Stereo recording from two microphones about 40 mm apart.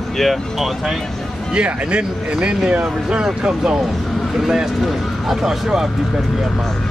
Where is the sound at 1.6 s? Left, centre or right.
Right; by 6.7 s centre.